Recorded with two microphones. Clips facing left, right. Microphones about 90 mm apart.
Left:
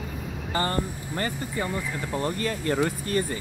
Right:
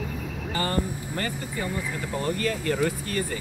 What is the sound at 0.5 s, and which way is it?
Vehicle, 30° left (ahead or behind).